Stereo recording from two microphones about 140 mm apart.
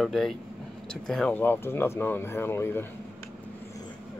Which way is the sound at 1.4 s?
15° left (ahead or behind).